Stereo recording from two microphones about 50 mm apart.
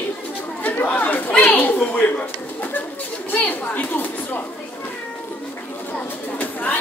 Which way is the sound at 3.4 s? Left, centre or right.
Left.